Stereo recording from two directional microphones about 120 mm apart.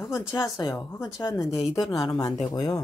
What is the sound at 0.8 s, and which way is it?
Speech, 20° left (ahead or behind).